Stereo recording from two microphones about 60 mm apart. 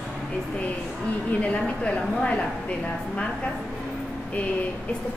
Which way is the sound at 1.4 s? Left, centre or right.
Left.